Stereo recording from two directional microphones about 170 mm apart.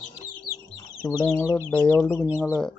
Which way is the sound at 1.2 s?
15° left (ahead or behind).